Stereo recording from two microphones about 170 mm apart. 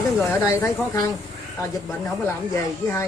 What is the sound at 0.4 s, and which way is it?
Speech, 20° left (ahead or behind).